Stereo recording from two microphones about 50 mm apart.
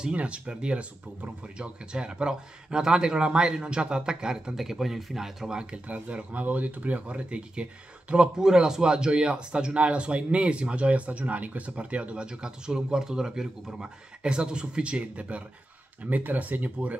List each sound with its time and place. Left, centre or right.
0.1 s speech: right
5.9 s speech: right